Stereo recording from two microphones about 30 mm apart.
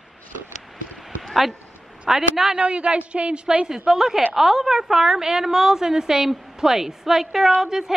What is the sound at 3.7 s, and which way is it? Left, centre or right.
A woman's voice, centre.